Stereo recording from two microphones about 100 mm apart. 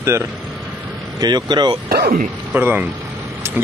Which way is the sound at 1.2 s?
45° right (ahead or behind).